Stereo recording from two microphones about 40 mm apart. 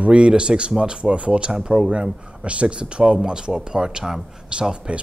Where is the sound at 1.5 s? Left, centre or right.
Centre.